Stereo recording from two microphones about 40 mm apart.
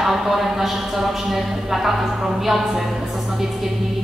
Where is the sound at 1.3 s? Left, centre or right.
Centre.